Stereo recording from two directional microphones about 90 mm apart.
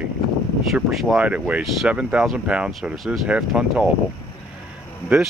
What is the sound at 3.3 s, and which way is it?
Speech, 10° right (ahead or behind).